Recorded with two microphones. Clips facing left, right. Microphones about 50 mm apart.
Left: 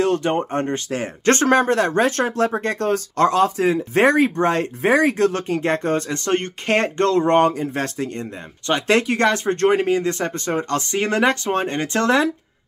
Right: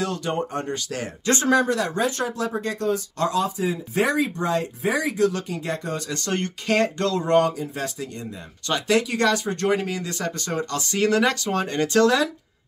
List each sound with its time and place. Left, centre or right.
0.0 s speech: left
1.2 s speech: left